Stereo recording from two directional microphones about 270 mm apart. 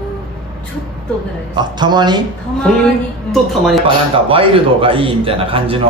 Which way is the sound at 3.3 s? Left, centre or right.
Centre.